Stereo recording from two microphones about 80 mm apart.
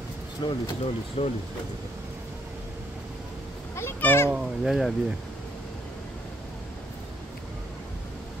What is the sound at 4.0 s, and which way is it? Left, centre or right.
Speech, left.